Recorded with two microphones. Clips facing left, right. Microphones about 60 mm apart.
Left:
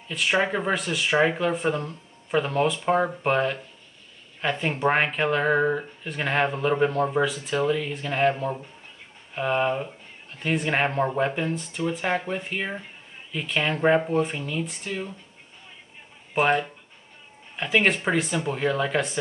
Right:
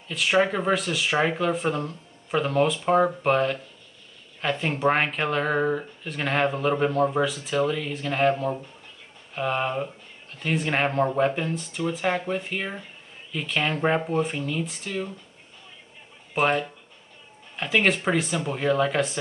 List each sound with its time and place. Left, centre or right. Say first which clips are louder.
0.1 s speech: right 1 dB; centre
16.3 s speech: left 1 dB; centre